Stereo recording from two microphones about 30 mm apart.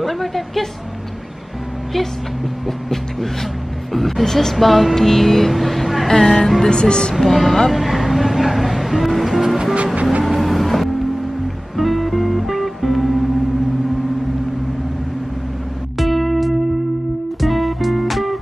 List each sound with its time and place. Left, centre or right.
0.0 s speech: centre
3.9 s a sound: centre
4.6 s speech: centre
6.7 s speech: left
7.2 s speech: centre
7.7 s music: centre
10.2 s vehicle: centre
11.7 s music: centre
16.0 s music: centre